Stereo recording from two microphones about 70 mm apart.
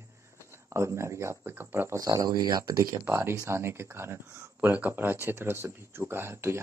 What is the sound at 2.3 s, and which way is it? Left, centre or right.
Speech, right.